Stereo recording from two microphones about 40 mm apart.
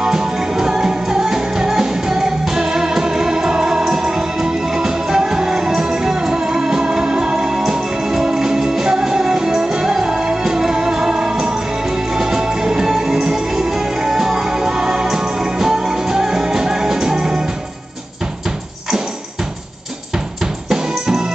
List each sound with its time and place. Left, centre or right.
0.0 s music: centre